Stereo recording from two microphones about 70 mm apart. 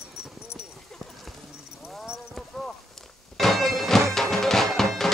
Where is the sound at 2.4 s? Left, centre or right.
Centre.